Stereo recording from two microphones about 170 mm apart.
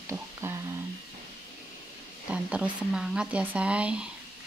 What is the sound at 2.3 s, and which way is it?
Speech, 5° right (ahead or behind).